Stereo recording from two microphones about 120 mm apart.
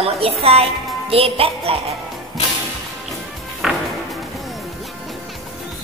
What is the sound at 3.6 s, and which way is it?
Music, 10° right (ahead or behind).